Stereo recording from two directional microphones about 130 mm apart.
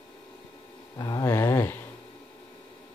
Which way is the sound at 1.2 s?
20° left (ahead or behind).